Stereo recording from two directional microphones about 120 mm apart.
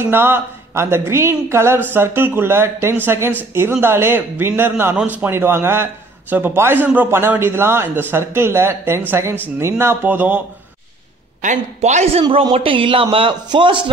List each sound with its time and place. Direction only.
0.0 s a man's voice: 20° right (ahead or behind)
11.4 s a man's voice: 80° right; by 13.8 s 45° right (ahead or behind)